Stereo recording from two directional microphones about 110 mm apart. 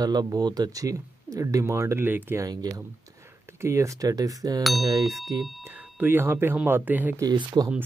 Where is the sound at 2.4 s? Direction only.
35° right (ahead or behind).